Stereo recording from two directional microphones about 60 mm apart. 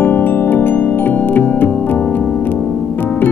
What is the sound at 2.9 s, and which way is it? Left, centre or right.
Music, left.